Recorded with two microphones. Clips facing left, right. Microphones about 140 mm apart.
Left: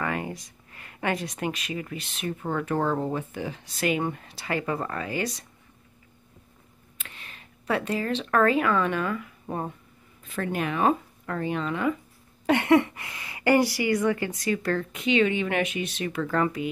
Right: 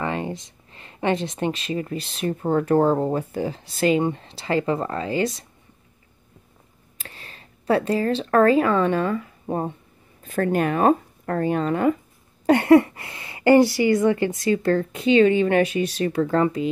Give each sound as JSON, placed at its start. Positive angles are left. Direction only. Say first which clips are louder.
{"t": 0.0, "sound": "speech", "louder": "right 4 dB", "side_deg": -25}
{"t": 7.0, "sound": "speech", "louder": "right 4 dB", "side_deg": -35}
{"t": 10.2, "sound": "speech", "louder": "right 7 dB", "side_deg": -45}